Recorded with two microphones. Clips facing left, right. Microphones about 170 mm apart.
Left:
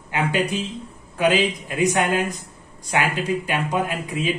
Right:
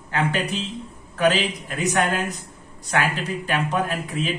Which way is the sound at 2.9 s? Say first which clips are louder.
Left 2 dB; 15° left (ahead or behind).